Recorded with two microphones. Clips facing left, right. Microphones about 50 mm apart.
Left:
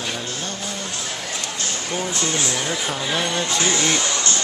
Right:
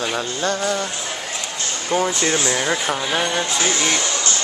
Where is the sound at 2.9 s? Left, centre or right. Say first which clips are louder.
Right 2 dB; centre.